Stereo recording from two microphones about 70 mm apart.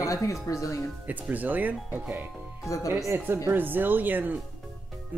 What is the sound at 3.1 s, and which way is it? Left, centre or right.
Speech, right.